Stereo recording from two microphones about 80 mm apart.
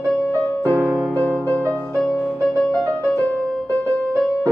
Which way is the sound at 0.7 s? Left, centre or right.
Right.